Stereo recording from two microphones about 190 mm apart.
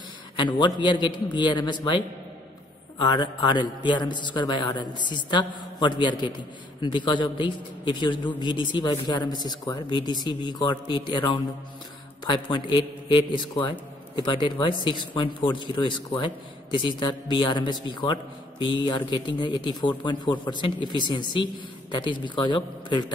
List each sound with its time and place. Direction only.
0.4 s a man's voice: 25° left (ahead or behind)